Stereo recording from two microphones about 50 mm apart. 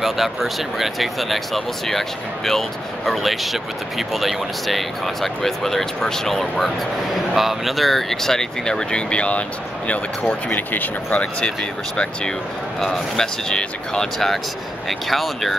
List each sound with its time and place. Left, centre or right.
0.0 s speech: centre; by 9.4 s left
10.5 s speech: left
12.0 s speech: centre
12.8 s speech: centre
14.1 s speech: centre